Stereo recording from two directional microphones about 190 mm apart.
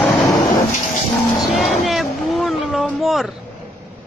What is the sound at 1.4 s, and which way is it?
Vehicle, centre (ahead or behind).